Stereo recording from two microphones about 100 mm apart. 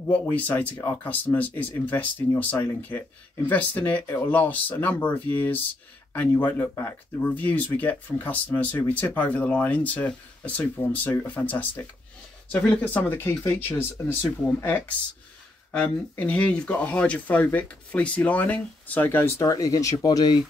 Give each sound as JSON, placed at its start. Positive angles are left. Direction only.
{"t": 0.1, "sound": "speech", "side_deg": 15}
{"t": 3.4, "sound": "speech", "side_deg": 20}
{"t": 19.4, "sound": "speech", "side_deg": 35}